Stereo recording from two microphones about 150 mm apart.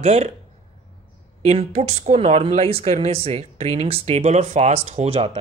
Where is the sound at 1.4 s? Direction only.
45° right (ahead or behind).